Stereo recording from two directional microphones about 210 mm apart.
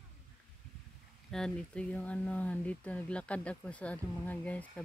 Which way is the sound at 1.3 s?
5° left (ahead or behind).